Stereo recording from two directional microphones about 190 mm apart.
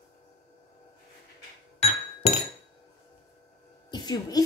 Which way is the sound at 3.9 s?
20° left (ahead or behind).